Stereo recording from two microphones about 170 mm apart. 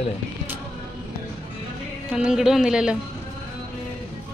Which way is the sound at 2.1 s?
5° right (ahead or behind).